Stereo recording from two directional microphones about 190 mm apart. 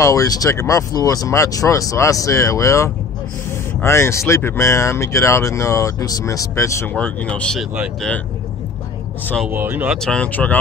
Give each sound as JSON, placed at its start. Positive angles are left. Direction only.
{"t": 0.0, "sound": "speech", "side_deg": 15}
{"t": 7.7, "sound": "speech", "side_deg": -5}
{"t": 9.5, "sound": "speech", "side_deg": -10}
{"t": 10.0, "sound": "speech", "side_deg": 5}